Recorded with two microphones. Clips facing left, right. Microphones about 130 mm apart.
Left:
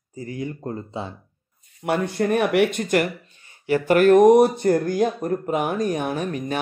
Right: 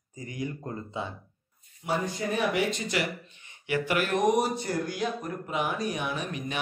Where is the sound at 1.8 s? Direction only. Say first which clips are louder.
Left 7 dB; 65° left (ahead or behind); by 6.5 s 45° left (ahead or behind).